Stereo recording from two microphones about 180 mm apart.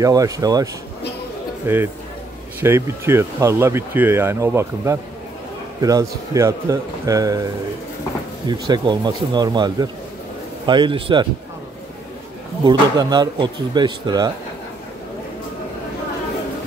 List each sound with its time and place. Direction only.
0.0 s speech: 20° right (ahead or behind)
8.5 s speech: 25° right (ahead or behind)
12.6 s speech: 20° right (ahead or behind)